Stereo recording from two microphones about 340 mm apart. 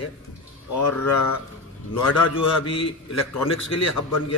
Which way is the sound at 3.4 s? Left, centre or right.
Left.